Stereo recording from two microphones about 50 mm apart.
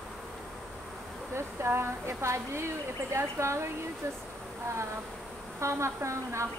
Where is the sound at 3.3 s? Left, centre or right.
Right.